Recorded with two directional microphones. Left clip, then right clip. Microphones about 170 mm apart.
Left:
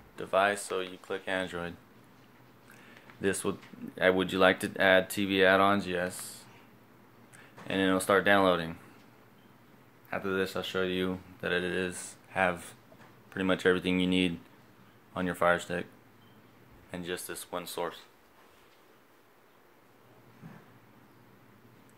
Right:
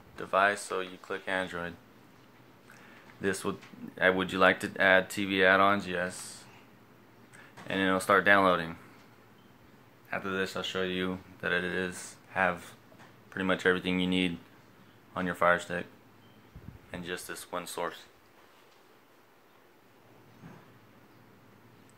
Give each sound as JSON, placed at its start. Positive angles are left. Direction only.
{"t": 0.1, "sound": "speech", "side_deg": 15}
{"t": 3.2, "sound": "speech", "side_deg": 20}
{"t": 7.6, "sound": "speech", "side_deg": 25}
{"t": 10.0, "sound": "speech", "side_deg": 35}
{"t": 16.9, "sound": "speech", "side_deg": 25}